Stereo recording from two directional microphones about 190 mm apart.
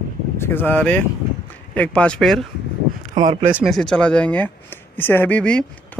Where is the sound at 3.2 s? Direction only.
45° right (ahead or behind).